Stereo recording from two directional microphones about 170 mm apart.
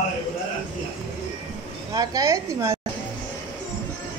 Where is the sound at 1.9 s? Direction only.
20° right (ahead or behind).